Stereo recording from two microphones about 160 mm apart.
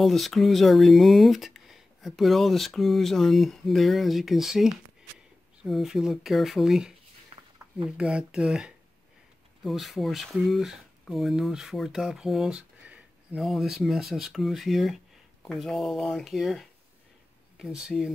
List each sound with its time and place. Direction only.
0.0 s speech: centre (ahead or behind)
7.3 s a sound: 40° right (ahead or behind)
8.0 s speech: 5° right (ahead or behind)